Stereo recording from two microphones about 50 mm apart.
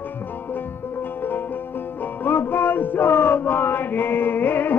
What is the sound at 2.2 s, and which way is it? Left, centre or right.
Male singing, left.